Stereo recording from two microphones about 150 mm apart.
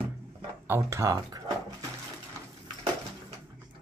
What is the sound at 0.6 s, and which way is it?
Speech, 15° right (ahead or behind).